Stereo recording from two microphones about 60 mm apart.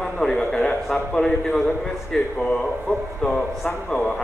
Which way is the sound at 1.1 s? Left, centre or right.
Centre.